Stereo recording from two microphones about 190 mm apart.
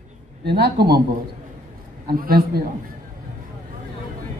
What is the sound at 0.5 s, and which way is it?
Speech, 60° right (ahead or behind).